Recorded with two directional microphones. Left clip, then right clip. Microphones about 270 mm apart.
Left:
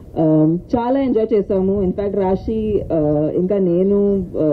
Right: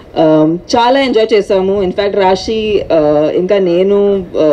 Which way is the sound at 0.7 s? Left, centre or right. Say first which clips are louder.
Right 9 dB; centre.